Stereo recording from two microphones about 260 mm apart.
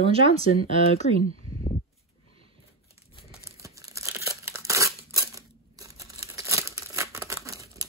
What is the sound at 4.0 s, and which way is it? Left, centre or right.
Crumpling, centre.